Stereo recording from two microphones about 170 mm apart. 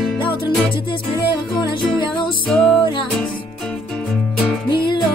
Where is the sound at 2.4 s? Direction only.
5° left (ahead or behind).